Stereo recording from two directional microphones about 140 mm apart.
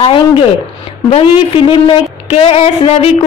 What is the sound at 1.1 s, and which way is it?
A man's voice, 45° left (ahead or behind).